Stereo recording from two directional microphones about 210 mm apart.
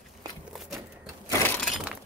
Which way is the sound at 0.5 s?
Centre (ahead or behind).